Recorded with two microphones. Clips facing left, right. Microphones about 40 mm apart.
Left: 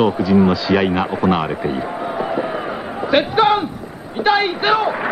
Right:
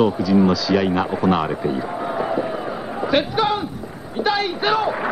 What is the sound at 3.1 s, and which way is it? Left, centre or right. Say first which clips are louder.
Speech: left 5 dB; left.